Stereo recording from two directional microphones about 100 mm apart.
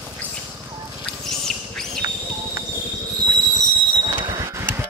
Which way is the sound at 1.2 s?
5° left (ahead or behind).